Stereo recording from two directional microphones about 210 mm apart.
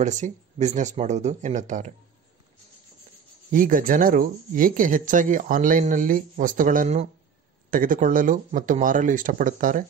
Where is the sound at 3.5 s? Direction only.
40° right (ahead or behind).